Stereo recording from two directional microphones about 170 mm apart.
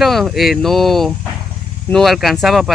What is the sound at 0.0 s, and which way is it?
Speech, centre (ahead or behind).